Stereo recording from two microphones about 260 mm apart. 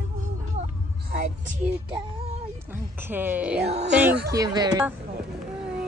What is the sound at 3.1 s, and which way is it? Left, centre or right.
Speech, centre.